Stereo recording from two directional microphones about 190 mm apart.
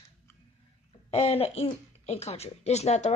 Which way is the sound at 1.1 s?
30° left (ahead or behind).